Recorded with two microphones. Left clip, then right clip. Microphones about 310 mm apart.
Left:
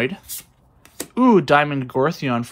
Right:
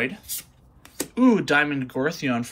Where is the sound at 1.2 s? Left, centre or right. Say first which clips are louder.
Left 5 dB; centre.